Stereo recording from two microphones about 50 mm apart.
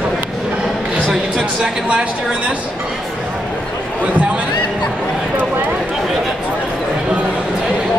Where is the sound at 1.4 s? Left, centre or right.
Centre.